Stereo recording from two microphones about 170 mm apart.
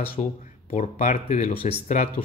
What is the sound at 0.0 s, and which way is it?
Speech, 40° left (ahead or behind).